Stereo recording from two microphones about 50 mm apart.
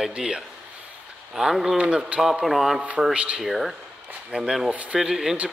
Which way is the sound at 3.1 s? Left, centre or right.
Right.